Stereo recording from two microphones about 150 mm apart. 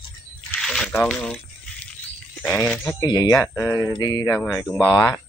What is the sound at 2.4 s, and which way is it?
Speech, 5° left (ahead or behind).